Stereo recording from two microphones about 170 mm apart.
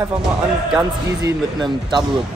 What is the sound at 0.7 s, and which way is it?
Speech, 25° right (ahead or behind).